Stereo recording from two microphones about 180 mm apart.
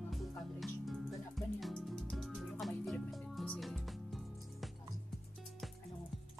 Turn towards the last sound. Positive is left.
turn(degrees=0)  # may be behind; listen again after turning